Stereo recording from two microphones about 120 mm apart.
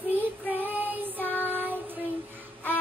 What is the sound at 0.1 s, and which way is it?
Child singing, 15° right (ahead or behind).